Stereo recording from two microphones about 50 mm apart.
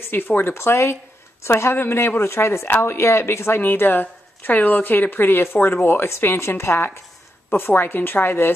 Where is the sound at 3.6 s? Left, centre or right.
Left.